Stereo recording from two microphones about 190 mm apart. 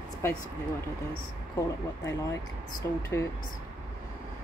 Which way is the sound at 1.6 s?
15° left (ahead or behind).